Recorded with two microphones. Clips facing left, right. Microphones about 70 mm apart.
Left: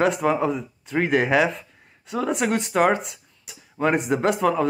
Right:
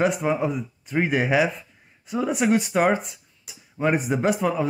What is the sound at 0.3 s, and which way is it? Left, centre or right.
Speech, centre.